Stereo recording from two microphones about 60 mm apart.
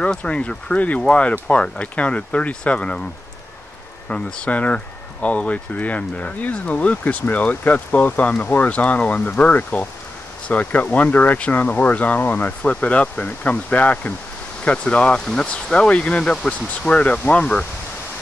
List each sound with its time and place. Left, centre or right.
0.0 s speech: centre
4.1 s speech: left